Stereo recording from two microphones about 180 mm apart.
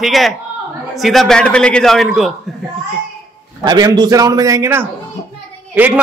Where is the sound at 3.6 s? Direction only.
20° right (ahead or behind).